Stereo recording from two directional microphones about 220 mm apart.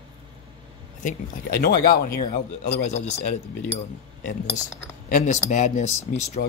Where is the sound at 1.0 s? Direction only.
45° left (ahead or behind).